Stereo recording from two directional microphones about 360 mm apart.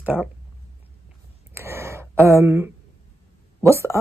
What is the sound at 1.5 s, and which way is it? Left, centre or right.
Speech, centre.